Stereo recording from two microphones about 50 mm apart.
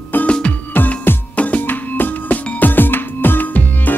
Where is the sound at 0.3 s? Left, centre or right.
Left.